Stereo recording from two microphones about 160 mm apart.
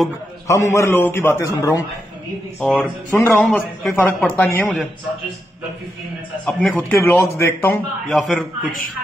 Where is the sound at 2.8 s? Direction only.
15° left (ahead or behind).